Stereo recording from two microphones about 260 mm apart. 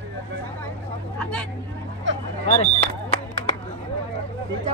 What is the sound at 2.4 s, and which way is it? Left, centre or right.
Speech, left.